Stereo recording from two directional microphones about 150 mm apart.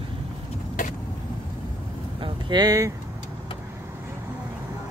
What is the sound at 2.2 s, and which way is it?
Vehicle, 30° right (ahead or behind).